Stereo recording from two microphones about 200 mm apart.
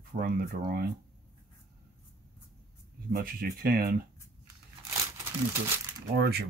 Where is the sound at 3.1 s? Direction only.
45° right (ahead or behind).